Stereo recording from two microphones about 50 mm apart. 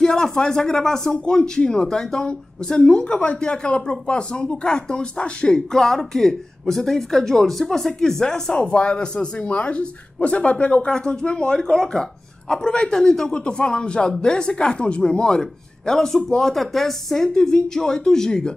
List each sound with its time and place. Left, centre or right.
0.0 s speech: centre